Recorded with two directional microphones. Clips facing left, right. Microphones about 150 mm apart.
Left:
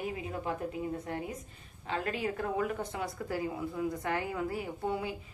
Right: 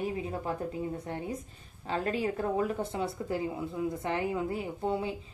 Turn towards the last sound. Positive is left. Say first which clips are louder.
# right 3 dB
turn(degrees=-25)  # may be behind; listen again after turning